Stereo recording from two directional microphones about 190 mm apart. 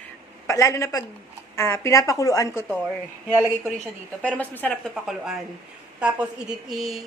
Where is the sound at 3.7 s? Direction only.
5° left (ahead or behind).